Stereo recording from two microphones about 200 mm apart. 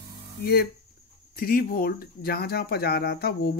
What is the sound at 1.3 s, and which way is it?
Speech, 45° left (ahead or behind).